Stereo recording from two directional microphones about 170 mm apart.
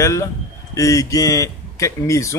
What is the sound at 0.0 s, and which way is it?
Speech, 15° left (ahead or behind).